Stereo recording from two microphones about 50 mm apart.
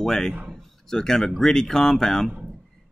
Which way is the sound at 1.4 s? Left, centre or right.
Centre.